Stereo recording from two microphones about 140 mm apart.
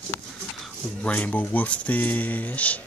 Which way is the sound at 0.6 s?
10° left (ahead or behind).